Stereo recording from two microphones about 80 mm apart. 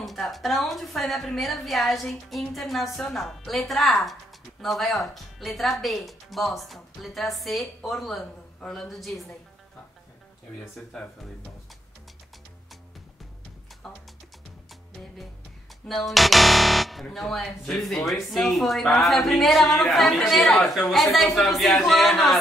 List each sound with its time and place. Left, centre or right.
0.0 s a woman's voice: centre
15.9 s a woman's voice: centre